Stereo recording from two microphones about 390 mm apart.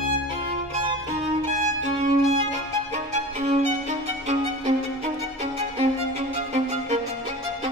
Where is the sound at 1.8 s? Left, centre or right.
Centre.